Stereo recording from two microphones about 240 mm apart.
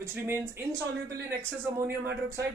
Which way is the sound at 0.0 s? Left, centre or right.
Centre.